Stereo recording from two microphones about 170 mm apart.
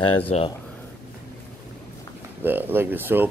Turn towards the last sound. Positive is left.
turn(degrees=-10)  # may be behind; listen again after turning